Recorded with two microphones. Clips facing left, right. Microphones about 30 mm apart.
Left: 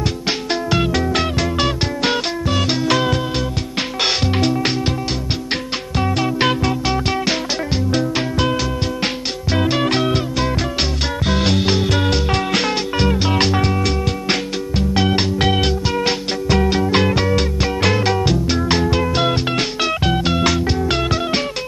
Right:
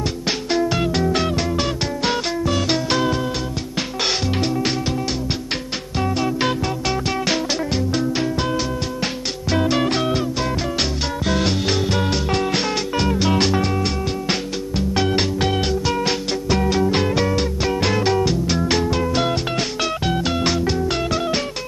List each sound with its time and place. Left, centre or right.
1.3 s music: left
3.7 s music: left
6.4 s music: left
10.8 s music: left
11.8 s music: left
13.2 s music: left
14.2 s music: left
16.6 s music: left
17.4 s music: left
18.8 s music: left